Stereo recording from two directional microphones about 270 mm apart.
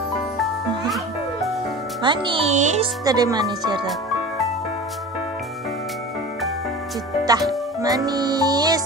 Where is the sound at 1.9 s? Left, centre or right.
Centre.